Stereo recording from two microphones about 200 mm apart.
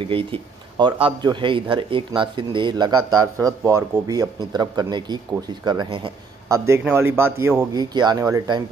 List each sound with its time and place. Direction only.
0.1 s speech: 25° right (ahead or behind)
6.8 s speech: 10° right (ahead or behind)